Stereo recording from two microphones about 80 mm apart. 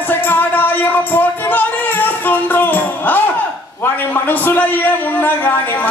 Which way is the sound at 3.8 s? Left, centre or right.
Left.